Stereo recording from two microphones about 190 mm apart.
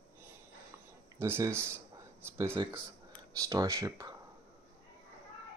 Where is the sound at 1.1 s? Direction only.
10° right (ahead or behind).